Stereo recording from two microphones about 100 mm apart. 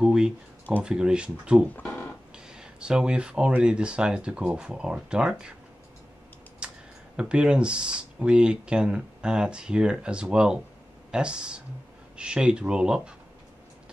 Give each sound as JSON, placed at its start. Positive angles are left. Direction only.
{"t": 0.0, "sound": "a sound", "side_deg": -5}
{"t": 0.8, "sound": "speech", "side_deg": -10}
{"t": 1.8, "sound": "a sound", "side_deg": 15}
{"t": 2.3, "sound": "speech", "side_deg": -10}
{"t": 6.6, "sound": "computer keyboard", "side_deg": -10}
{"t": 7.2, "sound": "speech", "side_deg": -10}